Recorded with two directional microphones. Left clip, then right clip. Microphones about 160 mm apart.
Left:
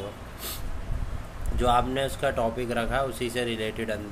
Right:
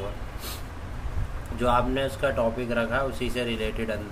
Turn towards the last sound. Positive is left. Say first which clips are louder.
# right 1 dB
turn(degrees=25)  # may be behind; listen again after turning